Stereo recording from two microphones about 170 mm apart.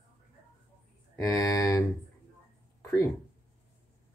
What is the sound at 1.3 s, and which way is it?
Speech, 20° left (ahead or behind).